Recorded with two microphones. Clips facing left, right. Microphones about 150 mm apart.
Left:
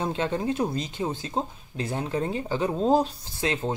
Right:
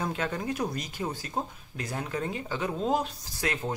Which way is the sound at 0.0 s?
25° left (ahead or behind).